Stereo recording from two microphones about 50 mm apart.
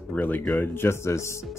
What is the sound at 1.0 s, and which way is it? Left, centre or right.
Speech, left.